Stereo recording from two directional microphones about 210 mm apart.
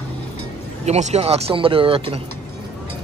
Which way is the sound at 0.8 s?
30° right (ahead or behind).